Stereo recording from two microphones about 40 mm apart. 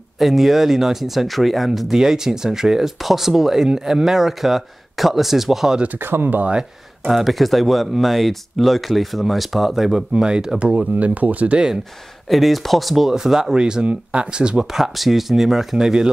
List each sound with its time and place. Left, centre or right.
0.2 s speech: centre
5.9 s speech: right
7.1 s speech: centre
10.6 s speech: right
12.3 s speech: centre; by 14.7 s right
14.7 s speech: centre